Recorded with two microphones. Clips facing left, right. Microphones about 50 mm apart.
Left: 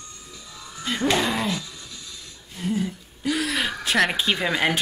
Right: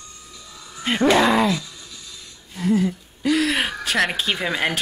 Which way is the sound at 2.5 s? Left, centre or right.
Right.